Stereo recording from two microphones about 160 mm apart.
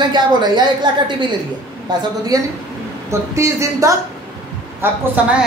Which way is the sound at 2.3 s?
25° right (ahead or behind).